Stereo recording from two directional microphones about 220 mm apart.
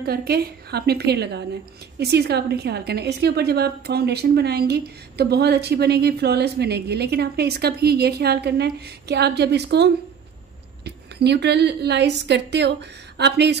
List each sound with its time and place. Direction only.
0.0 s a woman's voice: 45° right (ahead or behind)
11.1 s a woman's voice: 50° right (ahead or behind)